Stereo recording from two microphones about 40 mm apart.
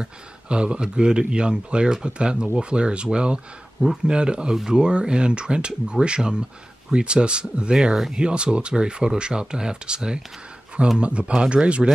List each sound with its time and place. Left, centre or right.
0.0 s speech: right